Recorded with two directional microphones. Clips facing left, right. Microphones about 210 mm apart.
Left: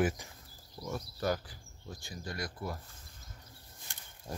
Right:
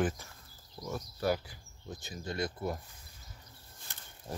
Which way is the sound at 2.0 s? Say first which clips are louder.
Right 5 dB; 20° right (ahead or behind).